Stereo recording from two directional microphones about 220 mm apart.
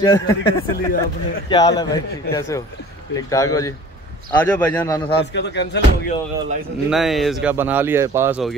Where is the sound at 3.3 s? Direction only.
15° left (ahead or behind).